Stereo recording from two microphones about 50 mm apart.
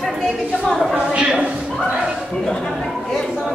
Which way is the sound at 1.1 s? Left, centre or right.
Right.